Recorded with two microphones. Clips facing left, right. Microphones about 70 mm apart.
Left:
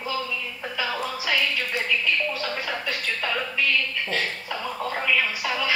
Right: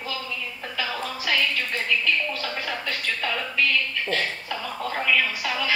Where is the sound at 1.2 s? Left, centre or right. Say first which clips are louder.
Right 1 dB; centre.